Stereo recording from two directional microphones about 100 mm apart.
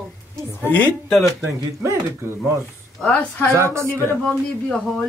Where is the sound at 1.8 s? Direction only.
30° right (ahead or behind).